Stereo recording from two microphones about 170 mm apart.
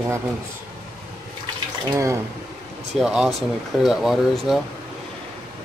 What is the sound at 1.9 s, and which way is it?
Speech, 15° right (ahead or behind).